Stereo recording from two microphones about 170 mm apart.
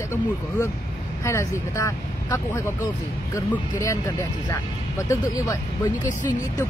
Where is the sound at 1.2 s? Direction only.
15° left (ahead or behind).